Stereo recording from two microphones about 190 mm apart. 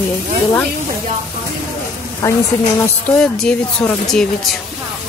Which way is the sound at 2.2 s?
15° left (ahead or behind).